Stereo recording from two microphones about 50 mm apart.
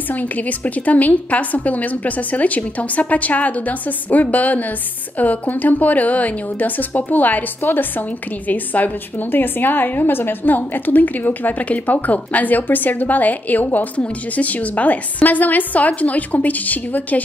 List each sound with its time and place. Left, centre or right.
0.1 s a woman's voice: left